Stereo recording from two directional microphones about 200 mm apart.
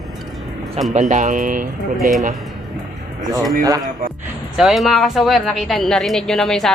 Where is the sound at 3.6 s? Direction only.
20° right (ahead or behind).